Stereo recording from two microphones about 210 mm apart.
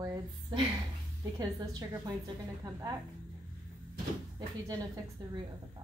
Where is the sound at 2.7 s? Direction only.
15° right (ahead or behind).